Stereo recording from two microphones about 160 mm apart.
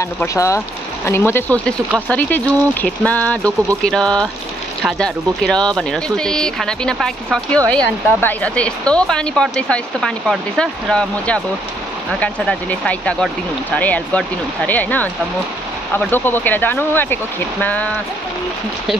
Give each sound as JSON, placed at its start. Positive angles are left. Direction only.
{"t": 0.0, "sound": "speech", "side_deg": 20}